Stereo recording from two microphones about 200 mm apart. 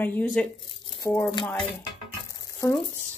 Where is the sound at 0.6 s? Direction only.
25° left (ahead or behind).